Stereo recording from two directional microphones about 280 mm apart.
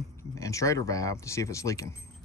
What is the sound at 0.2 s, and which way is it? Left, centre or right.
Speech, centre.